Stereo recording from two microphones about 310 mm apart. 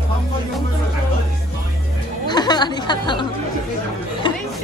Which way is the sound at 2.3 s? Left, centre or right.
Centre.